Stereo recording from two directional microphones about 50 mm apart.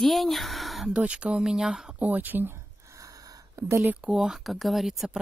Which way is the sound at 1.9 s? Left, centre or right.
Right.